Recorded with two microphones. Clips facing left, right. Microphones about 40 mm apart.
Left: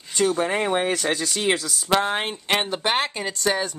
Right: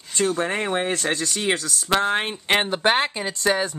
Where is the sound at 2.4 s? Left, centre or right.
Right.